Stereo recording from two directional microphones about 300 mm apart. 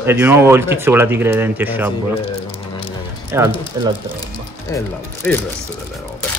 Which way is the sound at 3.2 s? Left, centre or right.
Centre.